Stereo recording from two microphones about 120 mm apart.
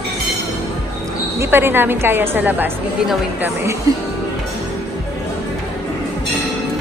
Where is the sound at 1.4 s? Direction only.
20° right (ahead or behind).